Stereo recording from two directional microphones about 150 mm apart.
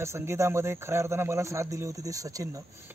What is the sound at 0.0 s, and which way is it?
Speech, 20° right (ahead or behind).